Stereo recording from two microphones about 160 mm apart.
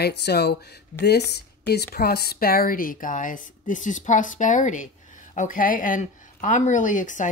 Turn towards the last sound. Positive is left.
turn(degrees=55)  # may be behind; listen again after turning